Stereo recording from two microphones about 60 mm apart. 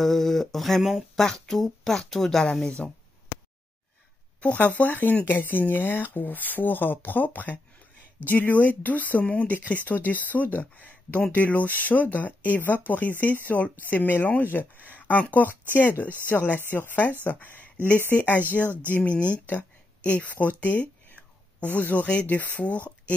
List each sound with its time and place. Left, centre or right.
0.0 s speech: centre
4.4 s speech: left